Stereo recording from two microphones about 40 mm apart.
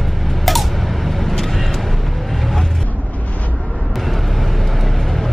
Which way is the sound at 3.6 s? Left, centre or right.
Left.